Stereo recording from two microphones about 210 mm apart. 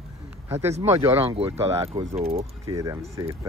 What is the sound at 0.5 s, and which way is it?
Speech, 10° right (ahead or behind).